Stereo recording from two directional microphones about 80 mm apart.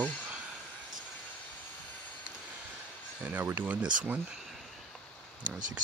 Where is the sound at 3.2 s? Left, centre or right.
Right.